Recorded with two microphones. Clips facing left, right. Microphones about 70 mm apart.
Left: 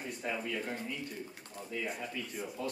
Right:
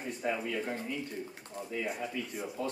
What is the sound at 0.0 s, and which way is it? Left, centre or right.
A man's voice, centre.